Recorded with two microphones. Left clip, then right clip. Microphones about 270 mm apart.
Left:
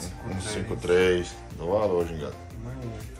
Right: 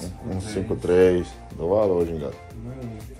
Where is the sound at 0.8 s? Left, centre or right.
Centre.